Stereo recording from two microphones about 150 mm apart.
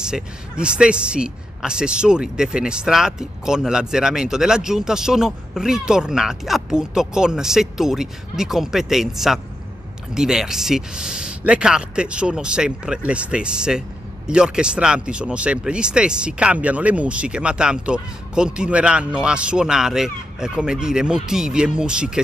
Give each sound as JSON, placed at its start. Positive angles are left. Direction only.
{"t": 0.0, "sound": "speech", "side_deg": -5}